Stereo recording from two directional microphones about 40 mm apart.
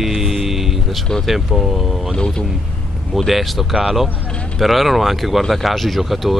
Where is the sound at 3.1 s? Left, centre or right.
Centre.